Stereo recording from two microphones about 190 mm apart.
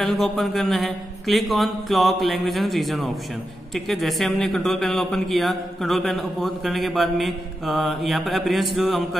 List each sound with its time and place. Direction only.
0.0 s a man's voice: centre (ahead or behind)